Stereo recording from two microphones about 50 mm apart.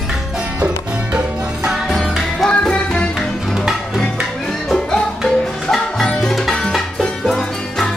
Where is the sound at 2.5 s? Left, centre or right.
Left.